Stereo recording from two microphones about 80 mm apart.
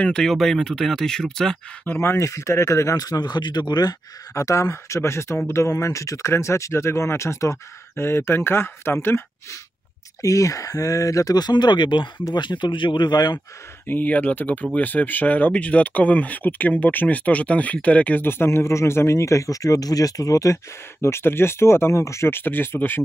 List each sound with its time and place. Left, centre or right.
0.0 s speech: centre
2.0 s speech: left
4.3 s speech: left
10.2 s speech: left
13.8 s speech: left
21.0 s speech: left